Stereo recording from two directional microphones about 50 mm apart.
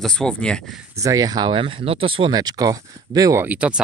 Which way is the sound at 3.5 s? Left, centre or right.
Right.